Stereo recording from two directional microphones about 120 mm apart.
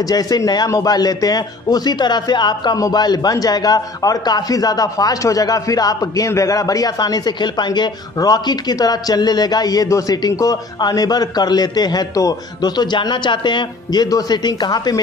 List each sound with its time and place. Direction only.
0.0 s a man's voice: 30° left (ahead or behind)